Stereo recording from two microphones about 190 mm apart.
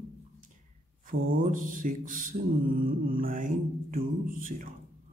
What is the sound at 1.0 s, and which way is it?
Mantra, 45° right (ahead or behind).